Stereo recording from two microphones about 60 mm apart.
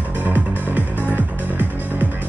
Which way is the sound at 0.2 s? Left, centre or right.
Right.